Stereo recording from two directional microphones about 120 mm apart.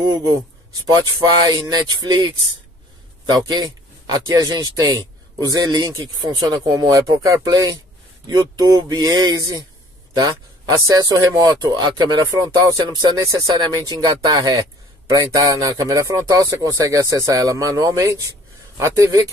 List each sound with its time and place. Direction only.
0.0 s speech: 30° right (ahead or behind)